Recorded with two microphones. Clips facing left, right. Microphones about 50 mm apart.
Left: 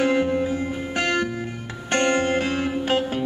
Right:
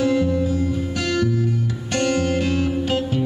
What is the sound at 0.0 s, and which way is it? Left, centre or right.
Music, left.